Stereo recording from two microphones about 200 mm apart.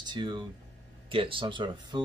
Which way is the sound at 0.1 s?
20° right (ahead or behind).